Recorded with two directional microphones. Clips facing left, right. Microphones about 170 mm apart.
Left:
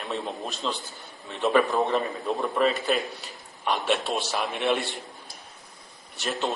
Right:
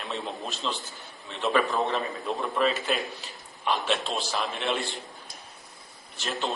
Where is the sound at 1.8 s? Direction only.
20° left (ahead or behind).